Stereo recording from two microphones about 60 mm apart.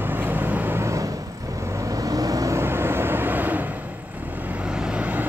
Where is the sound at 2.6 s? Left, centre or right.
Right.